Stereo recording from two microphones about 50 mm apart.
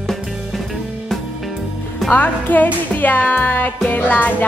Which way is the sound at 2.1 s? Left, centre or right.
Left.